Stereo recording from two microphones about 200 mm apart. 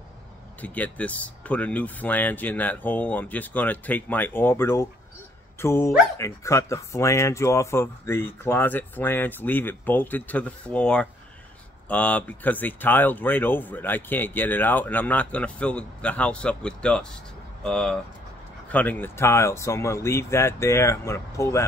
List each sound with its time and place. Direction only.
0.6 s speech: 5° left (ahead or behind)